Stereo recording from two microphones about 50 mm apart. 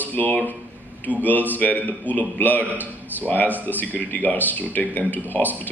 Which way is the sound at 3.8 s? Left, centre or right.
Left.